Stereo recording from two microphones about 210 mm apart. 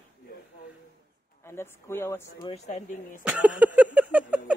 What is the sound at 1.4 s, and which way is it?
Speech, 10° left (ahead or behind).